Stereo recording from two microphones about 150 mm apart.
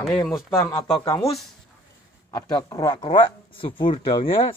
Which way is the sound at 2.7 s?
25° left (ahead or behind).